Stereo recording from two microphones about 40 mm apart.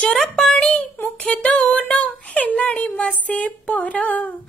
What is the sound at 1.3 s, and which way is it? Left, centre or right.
Child singing, left.